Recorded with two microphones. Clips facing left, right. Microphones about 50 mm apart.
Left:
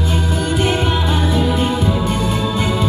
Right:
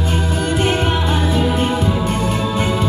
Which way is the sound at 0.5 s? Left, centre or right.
Right.